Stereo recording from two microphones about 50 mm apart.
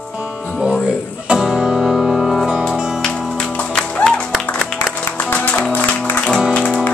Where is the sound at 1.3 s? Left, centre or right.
Centre.